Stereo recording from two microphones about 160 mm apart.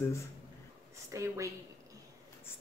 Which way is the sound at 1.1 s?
20° right (ahead or behind).